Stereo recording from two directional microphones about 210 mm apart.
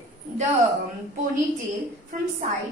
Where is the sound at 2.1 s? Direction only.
40° right (ahead or behind).